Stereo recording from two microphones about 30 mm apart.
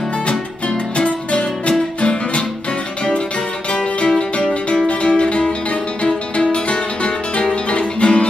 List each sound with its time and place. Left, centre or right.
0.9 s music: left
4.4 s music: left